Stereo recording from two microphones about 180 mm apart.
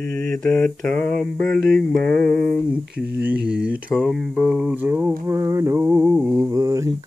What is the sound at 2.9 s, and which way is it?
Speech, 10° right (ahead or behind).